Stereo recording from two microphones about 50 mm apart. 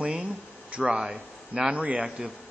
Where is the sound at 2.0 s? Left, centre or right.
Centre.